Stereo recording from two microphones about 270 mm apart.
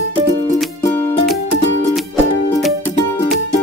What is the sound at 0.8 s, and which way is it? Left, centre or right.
Music, centre.